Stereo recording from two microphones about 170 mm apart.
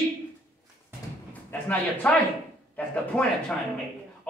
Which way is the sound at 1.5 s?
10° left (ahead or behind).